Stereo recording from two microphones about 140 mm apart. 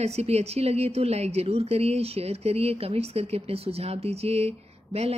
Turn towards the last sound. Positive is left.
turn(degrees=-50)  # may be behind; listen again after turning